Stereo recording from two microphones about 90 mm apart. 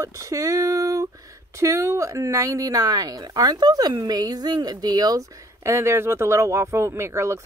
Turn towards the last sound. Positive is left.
turn(degrees=-30)  # may be behind; listen again after turning